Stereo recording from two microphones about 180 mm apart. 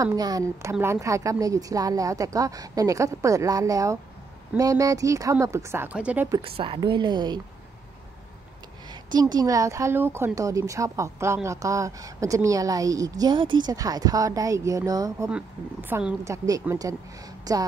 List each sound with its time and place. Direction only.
0.0 s speech: 20° right (ahead or behind)
6.4 s speech: 30° right (ahead or behind)
9.1 s speech: 20° right (ahead or behind)
15.2 s a woman's voice: 10° right (ahead or behind)